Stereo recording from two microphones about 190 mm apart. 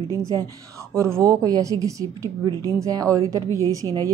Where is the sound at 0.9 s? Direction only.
15° right (ahead or behind).